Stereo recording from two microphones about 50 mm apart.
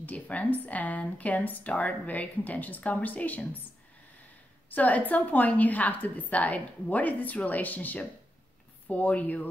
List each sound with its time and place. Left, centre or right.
0.0 s speech: left
4.6 s speech: left